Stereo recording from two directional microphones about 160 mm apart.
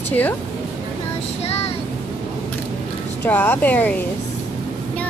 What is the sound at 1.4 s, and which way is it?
Child singing, 40° left (ahead or behind).